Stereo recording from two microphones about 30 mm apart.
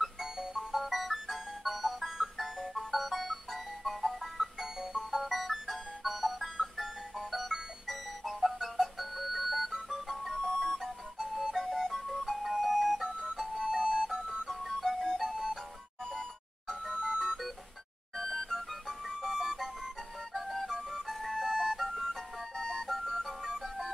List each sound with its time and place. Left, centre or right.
0.0 s music: centre
13.0 s music: right
13.7 s alarm clock: centre
14.1 s music: centre
14.5 s music: centre
16.8 s music: right
18.1 s music: centre
21.2 s music: centre
22.6 s a sound: centre
22.8 s music: centre